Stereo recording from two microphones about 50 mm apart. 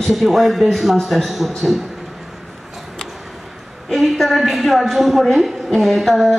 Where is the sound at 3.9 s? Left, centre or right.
Centre.